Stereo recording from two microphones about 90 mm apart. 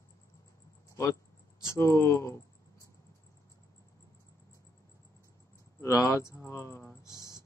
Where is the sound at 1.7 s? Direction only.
30° left (ahead or behind).